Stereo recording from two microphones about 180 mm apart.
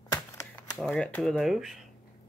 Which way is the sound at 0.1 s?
15° left (ahead or behind).